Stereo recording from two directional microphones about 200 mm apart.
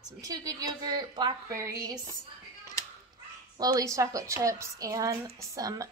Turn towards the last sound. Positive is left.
turn(degrees=-15)  # may be behind; listen again after turning